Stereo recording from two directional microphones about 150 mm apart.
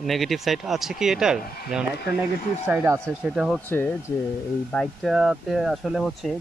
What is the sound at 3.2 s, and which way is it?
Speech, 5° right (ahead or behind).